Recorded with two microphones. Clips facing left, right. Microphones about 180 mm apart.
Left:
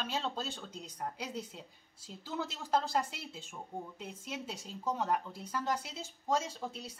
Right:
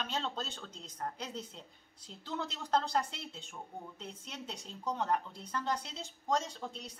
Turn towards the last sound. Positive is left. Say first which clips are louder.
# left 1 dB
turn(degrees=5)  # may be behind; listen again after turning